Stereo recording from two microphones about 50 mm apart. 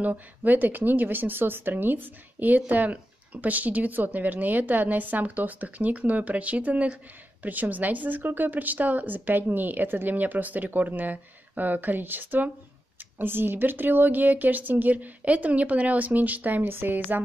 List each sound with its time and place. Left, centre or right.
0.0 s speech: right